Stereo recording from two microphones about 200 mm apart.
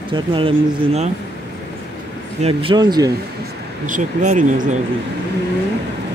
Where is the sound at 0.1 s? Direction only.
25° right (ahead or behind).